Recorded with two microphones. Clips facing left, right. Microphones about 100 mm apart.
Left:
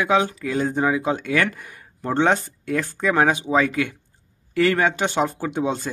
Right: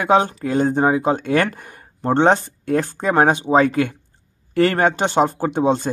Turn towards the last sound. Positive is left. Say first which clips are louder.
# right 6 dB
turn(degrees=-30)  # may be behind; listen again after turning